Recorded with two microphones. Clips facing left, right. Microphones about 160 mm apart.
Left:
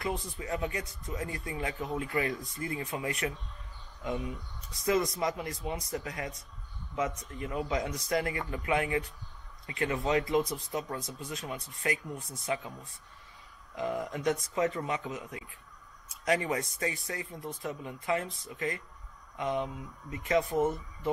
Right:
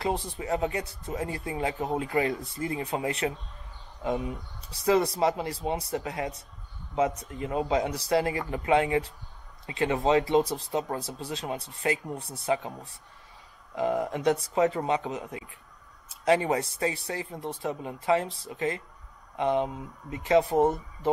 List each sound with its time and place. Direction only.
0.0 s speech: 30° right (ahead or behind)
13.7 s speech: 30° right (ahead or behind)